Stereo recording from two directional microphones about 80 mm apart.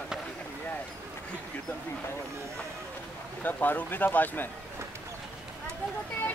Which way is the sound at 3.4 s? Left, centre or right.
Left.